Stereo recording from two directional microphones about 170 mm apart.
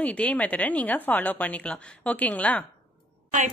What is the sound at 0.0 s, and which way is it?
Speech, 10° left (ahead or behind).